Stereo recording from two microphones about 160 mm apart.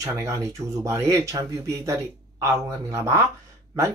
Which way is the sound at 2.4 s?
20° right (ahead or behind).